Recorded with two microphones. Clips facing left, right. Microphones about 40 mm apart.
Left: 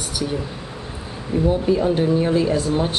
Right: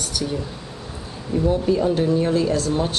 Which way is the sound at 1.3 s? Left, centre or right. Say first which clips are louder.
Left 1 dB; centre.